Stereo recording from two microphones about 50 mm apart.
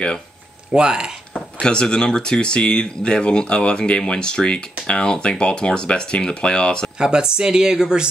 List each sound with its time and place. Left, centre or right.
0.7 s speech: centre
1.3 s speech: centre
7.0 s speech: centre